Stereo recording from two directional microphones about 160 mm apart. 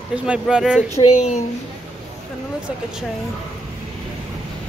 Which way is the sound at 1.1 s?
45° left (ahead or behind).